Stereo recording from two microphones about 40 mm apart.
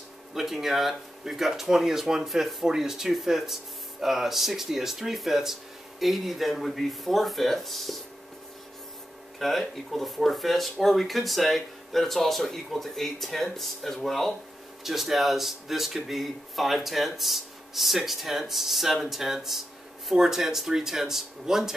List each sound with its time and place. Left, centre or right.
0.3 s speech: centre
9.4 s speech: centre
14.8 s speech: centre